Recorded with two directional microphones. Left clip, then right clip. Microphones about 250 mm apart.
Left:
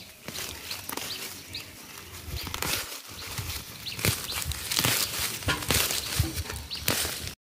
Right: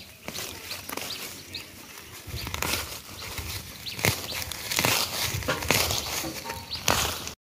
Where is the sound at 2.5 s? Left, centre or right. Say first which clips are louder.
Right 2 dB; centre.